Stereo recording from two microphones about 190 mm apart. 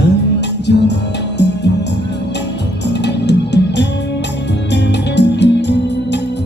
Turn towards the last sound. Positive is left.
turn(degrees=65)  # may be behind; listen again after turning